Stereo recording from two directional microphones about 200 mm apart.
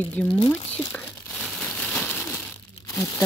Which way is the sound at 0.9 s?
5° left (ahead or behind).